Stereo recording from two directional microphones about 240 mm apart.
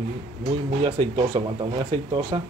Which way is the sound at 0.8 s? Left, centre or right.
Centre.